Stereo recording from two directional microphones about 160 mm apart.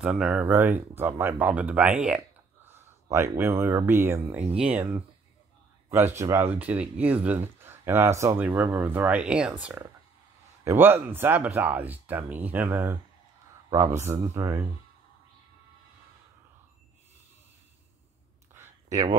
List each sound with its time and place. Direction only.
0.0 s speech: 5° right (ahead or behind)
6.1 s speech: 15° right (ahead or behind)
18.5 s a sound: 20° right (ahead or behind)